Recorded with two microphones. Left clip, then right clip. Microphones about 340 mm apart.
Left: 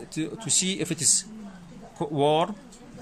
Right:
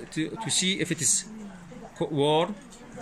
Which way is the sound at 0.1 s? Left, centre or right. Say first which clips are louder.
Even; centre.